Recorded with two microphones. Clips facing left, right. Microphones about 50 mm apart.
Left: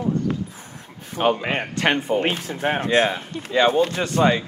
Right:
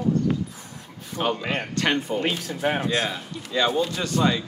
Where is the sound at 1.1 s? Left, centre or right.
Left.